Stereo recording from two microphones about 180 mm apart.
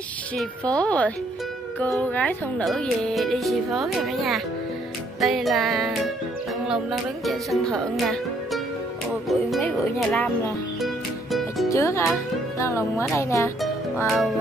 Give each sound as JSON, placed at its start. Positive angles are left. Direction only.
{"t": 0.7, "sound": "speech", "side_deg": 5}
{"t": 9.3, "sound": "speech", "side_deg": 0}
{"t": 14.0, "sound": "speech", "side_deg": 0}